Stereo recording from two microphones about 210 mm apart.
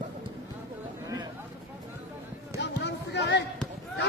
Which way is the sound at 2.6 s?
55° left (ahead or behind).